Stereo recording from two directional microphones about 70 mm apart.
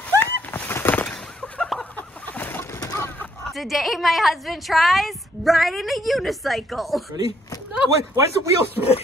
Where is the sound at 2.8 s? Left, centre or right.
Left.